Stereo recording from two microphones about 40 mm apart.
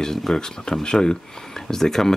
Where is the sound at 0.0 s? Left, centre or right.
Centre.